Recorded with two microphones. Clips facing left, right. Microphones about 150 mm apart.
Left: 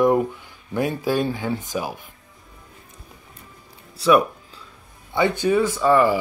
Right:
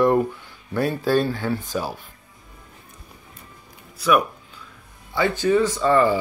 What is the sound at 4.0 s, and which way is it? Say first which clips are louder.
Speech: left 3 dB; 30° left (ahead or behind).